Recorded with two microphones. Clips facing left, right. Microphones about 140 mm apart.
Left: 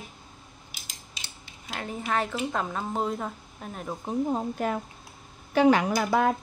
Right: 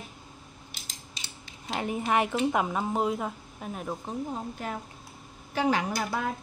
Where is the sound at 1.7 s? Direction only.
15° right (ahead or behind).